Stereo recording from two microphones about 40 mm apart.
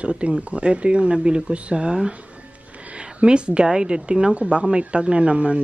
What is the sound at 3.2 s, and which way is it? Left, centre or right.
Speech, right.